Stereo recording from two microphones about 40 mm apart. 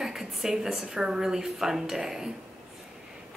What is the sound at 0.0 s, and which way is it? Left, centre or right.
A woman's voice, centre.